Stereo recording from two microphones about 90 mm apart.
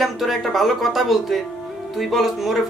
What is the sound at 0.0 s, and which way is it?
Speech, centre (ahead or behind).